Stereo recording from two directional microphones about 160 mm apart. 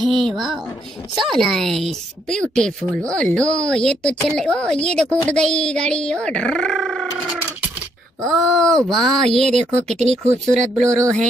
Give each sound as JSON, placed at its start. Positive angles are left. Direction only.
{"t": 0.0, "sound": "a woman's voice", "side_deg": 0}
{"t": 8.4, "sound": "speech", "side_deg": 0}
{"t": 9.9, "sound": "speech", "side_deg": -45}